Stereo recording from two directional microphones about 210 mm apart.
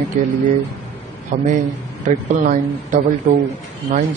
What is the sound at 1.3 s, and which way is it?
Speech, 35° right (ahead or behind).